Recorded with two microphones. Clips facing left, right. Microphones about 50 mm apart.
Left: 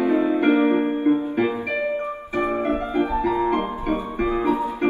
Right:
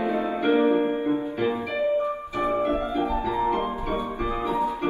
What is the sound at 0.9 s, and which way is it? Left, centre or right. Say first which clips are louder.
Music: left 5 dB; left.